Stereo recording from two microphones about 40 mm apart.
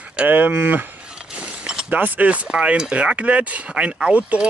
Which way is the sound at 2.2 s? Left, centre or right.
Right.